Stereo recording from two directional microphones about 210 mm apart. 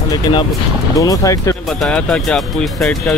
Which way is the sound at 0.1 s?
20° left (ahead or behind).